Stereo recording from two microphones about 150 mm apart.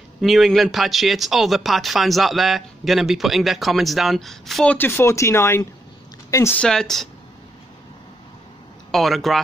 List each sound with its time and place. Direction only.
0.2 s speech: centre (ahead or behind)
4.7 s speech: 15° left (ahead or behind)
6.6 s speech: 5° left (ahead or behind)
8.9 s speech: centre (ahead or behind)